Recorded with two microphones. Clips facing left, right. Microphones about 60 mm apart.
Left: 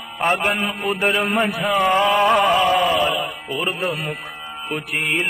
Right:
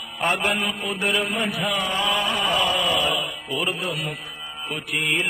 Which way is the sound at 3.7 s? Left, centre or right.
Left.